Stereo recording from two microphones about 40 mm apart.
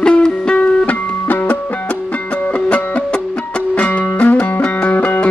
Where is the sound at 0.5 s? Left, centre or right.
Left.